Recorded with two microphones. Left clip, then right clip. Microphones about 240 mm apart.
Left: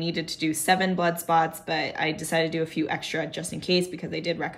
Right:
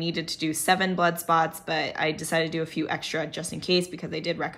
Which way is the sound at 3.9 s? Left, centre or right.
Right.